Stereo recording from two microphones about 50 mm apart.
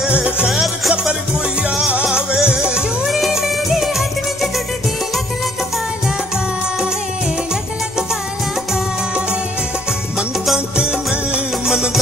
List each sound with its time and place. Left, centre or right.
0.1 s music: right
0.5 s music: centre
2.1 s music: centre
3.1 s music: centre
11.6 s music: centre